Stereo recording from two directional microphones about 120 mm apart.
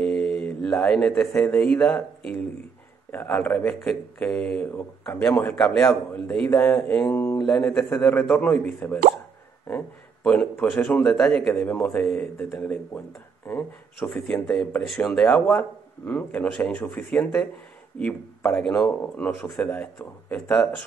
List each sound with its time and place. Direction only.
0.0 s a man's voice: 5° left (ahead or behind)